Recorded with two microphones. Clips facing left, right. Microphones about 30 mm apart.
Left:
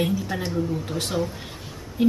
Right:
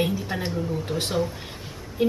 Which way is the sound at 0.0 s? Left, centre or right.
Right.